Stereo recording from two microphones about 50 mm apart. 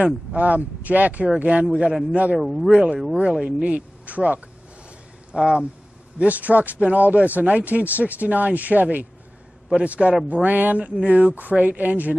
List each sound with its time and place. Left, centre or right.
0.0 s speech: right
2.3 s speech: centre
2.7 s speech: centre
3.6 s speech: right
5.3 s speech: centre
6.1 s speech: right
10.0 s speech: centre
10.3 s speech: right